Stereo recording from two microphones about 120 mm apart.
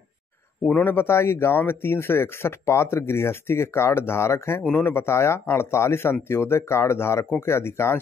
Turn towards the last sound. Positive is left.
turn(degrees=20)  # may be behind; listen again after turning